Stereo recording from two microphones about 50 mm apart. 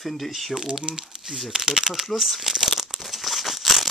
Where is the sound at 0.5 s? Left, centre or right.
Centre.